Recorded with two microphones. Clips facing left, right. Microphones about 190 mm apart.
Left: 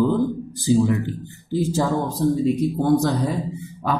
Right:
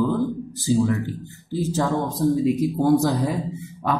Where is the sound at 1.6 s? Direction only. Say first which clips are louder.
Left 1 dB; 10° left (ahead or behind).